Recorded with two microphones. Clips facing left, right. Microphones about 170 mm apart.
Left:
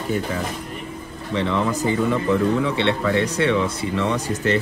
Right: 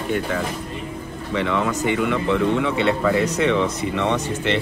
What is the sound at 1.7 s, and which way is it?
Speech, 30° left (ahead or behind).